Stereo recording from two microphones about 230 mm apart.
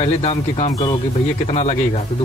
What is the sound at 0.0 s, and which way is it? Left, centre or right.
Speech, left.